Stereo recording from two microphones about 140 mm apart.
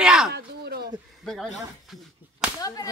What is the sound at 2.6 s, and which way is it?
Whip, 25° left (ahead or behind).